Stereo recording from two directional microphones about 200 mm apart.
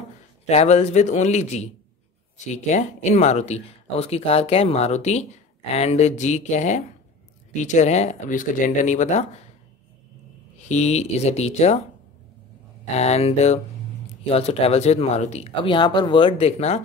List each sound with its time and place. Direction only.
0.5 s speech: 30° left (ahead or behind)
10.7 s speech: 35° left (ahead or behind)
12.9 s speech: 30° left (ahead or behind)